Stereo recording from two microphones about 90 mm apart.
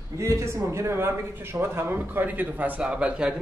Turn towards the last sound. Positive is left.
turn(degrees=-10)  # may be behind; listen again after turning